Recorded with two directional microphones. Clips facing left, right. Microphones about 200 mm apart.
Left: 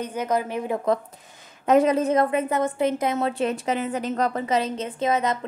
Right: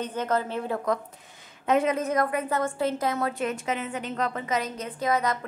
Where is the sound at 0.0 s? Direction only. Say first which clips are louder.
Left 2 dB; 10° left (ahead or behind).